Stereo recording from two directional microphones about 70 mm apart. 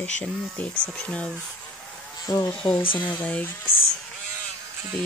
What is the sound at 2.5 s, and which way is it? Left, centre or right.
Speech, centre.